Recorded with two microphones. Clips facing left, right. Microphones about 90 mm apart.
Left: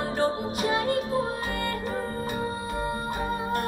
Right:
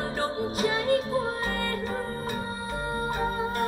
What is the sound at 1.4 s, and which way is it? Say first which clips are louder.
Music: even; 40° right (ahead or behind).